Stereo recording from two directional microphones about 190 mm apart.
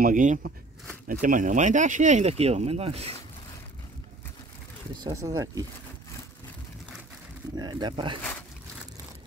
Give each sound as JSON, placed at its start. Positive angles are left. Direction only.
{"t": 0.0, "sound": "speech", "side_deg": -45}
{"t": 5.0, "sound": "speech", "side_deg": -20}
{"t": 7.5, "sound": "speech", "side_deg": -25}